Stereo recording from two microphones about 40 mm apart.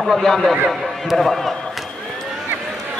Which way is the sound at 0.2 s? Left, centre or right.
Centre.